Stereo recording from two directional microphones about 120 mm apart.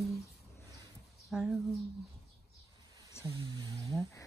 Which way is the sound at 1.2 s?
5° right (ahead or behind).